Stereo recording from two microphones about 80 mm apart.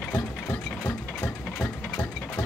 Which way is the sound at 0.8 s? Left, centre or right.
Left.